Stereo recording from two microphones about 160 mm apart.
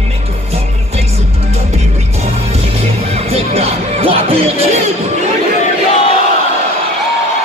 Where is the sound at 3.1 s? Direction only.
40° right (ahead or behind).